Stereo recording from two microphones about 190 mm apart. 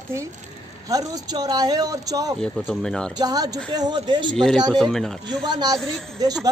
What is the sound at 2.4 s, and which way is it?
Speech, 5° left (ahead or behind).